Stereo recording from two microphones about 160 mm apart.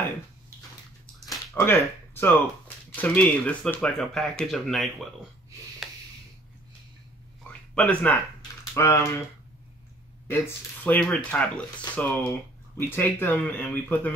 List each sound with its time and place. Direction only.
1.5 s speech: 15° left (ahead or behind)
7.4 s a sound: 5° left (ahead or behind)
8.7 s speech: 15° left (ahead or behind)
10.2 s speech: 15° left (ahead or behind)